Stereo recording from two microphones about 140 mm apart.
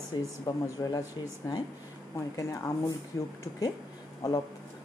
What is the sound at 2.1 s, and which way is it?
Speech, 20° left (ahead or behind).